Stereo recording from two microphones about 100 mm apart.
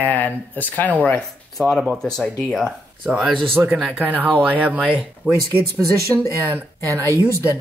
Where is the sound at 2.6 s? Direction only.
10° right (ahead or behind).